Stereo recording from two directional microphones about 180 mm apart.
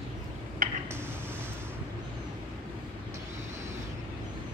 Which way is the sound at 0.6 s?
50° right (ahead or behind).